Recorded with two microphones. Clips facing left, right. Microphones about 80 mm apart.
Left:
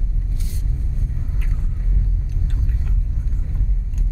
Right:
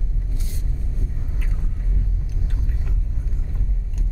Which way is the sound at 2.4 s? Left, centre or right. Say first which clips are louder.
Left 4 dB; centre.